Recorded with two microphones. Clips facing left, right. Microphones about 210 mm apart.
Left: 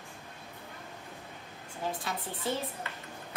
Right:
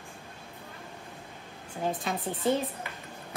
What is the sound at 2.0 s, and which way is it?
Speech, 15° right (ahead or behind).